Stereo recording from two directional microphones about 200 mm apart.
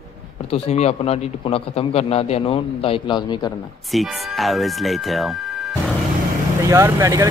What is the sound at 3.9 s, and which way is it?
Speech, centre (ahead or behind).